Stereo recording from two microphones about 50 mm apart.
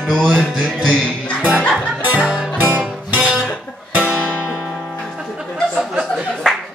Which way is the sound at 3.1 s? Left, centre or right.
Centre.